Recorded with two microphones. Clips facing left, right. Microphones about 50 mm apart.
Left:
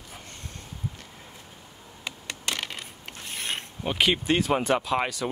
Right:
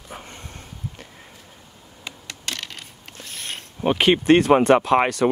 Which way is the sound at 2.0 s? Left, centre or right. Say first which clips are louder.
Even; centre.